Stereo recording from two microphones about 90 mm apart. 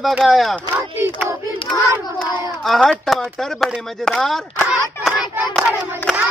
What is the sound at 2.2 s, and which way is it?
A child's voice, 5° left (ahead or behind).